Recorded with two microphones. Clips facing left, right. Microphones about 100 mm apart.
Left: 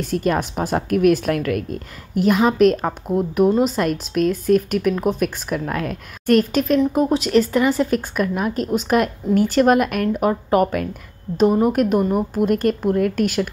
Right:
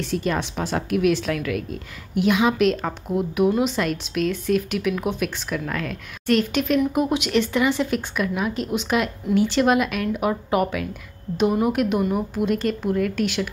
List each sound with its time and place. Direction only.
0.0 s a woman's voice: 50° left (ahead or behind)